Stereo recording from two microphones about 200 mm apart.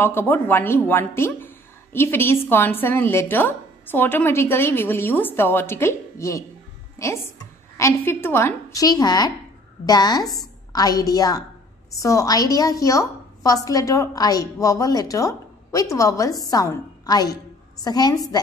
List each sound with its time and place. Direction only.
0.0 s a woman's voice: 10° left (ahead or behind)